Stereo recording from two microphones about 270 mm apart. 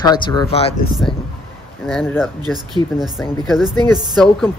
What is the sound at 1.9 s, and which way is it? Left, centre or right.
Speech, centre.